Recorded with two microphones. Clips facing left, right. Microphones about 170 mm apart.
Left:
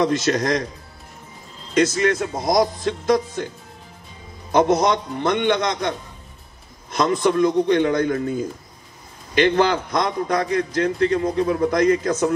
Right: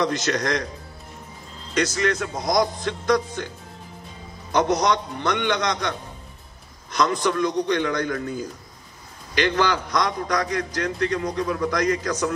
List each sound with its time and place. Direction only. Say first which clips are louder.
0.0 s a man's voice: left 4 dB; 25° left (ahead or behind)
2.0 s a man's voice: left 3 dB; 25° left (ahead or behind)
4.5 s a man's voice: left 3 dB; 25° left (ahead or behind)